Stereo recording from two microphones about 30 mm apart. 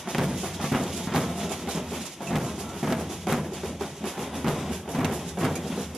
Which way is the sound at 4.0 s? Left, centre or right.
Centre.